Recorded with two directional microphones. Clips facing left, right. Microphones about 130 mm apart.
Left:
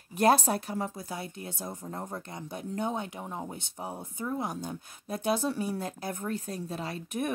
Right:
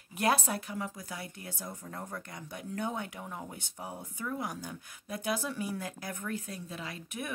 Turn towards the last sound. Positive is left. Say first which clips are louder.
# left 7 dB
turn(degrees=40)  # may be behind; listen again after turning